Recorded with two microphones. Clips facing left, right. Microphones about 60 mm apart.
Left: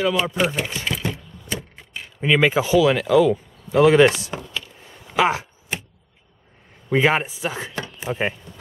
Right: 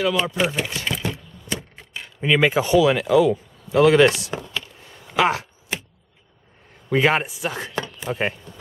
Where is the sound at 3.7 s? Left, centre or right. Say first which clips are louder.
Left 1 dB; centre.